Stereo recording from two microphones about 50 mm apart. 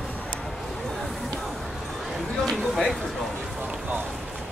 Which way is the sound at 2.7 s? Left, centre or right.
Centre.